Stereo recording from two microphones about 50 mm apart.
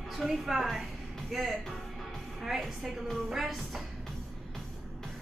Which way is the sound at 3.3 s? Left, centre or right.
Centre.